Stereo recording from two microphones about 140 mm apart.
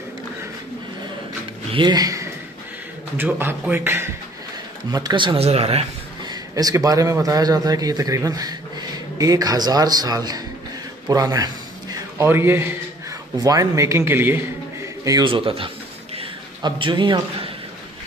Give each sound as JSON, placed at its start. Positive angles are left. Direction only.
{"t": 1.7, "sound": "speech", "side_deg": -35}
{"t": 3.2, "sound": "a man's voice", "side_deg": -15}
{"t": 4.9, "sound": "speech", "side_deg": -30}
{"t": 6.2, "sound": "a man's voice", "side_deg": -25}
{"t": 15.0, "sound": "speech", "side_deg": -30}
{"t": 16.2, "sound": "a sound", "side_deg": -35}